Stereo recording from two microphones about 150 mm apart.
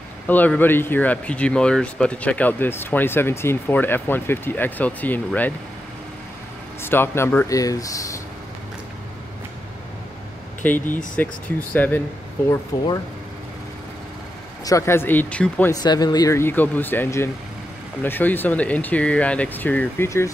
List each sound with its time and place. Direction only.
0.3 s speech: 10° left (ahead or behind)
6.8 s speech: 15° left (ahead or behind)
10.6 s speech: 10° left (ahead or behind)
14.6 s speech: 20° left (ahead or behind)
15.7 s speech: 25° left (ahead or behind)